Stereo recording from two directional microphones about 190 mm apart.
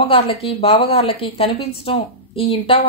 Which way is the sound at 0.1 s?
30° left (ahead or behind).